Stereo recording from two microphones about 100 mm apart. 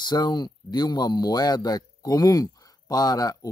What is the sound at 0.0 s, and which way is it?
Speech, 45° left (ahead or behind).